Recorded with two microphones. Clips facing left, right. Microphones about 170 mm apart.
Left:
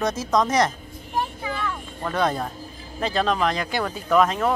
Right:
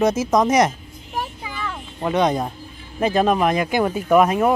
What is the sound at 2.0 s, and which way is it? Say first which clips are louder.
Speech: right 5 dB; 20° right (ahead or behind).